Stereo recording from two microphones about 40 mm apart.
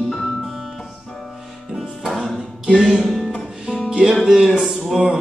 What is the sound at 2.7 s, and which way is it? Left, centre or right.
Music, centre.